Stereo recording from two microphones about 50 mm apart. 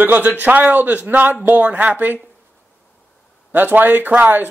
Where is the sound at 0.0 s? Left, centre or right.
Right.